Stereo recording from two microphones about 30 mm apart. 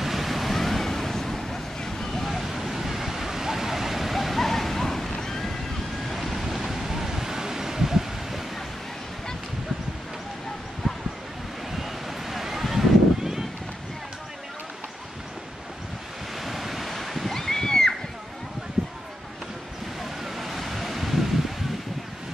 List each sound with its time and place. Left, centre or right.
0.0 s waves: centre
1.8 s vehicle: centre
2.2 s waves: centre
10.8 s a sound: centre
16.3 s waves: centre
17.3 s splash: centre
20.0 s waves: centre